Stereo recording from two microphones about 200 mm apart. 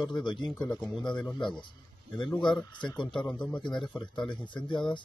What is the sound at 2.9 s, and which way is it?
Speech, 25° left (ahead or behind).